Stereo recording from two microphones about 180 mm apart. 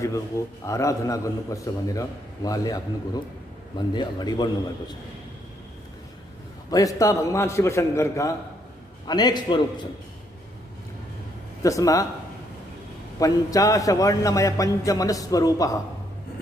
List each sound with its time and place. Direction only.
0.7 s a man's voice: 15° left (ahead or behind)
3.9 s a man's voice: 25° left (ahead or behind)
6.7 s a man's voice: 20° left (ahead or behind)
11.6 s a man's voice: 20° left (ahead or behind)
13.2 s a man's voice: 20° left (ahead or behind)